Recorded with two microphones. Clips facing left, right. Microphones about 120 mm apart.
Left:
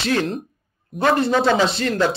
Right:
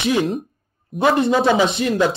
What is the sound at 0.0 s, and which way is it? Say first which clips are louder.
Speech: right 2 dB; 15° right (ahead or behind).